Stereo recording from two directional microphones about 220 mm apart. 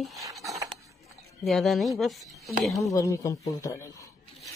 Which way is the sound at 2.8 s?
15° left (ahead or behind).